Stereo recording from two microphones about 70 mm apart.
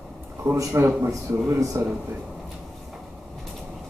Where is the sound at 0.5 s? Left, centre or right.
Right.